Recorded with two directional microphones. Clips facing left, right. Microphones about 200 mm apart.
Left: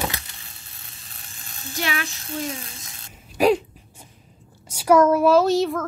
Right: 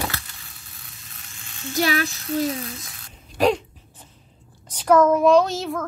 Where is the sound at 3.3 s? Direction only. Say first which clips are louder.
Left 2 dB; 10° left (ahead or behind).